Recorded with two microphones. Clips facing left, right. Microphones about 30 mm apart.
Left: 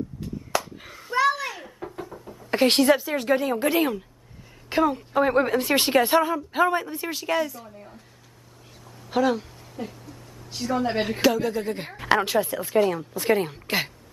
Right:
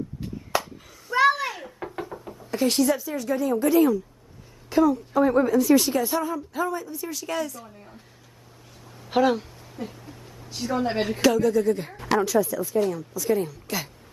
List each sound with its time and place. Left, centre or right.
0.2 s chop: centre
0.8 s a sound: left
1.1 s a sound: centre
2.1 s knock: centre
2.5 s a woman's voice: left
7.2 s a woman's voice: left
7.6 s speech: centre
9.1 s speech: centre
10.5 s speech: centre
11.1 s a woman's voice: centre; by 11.9 s left
12.0 s a woman's voice: left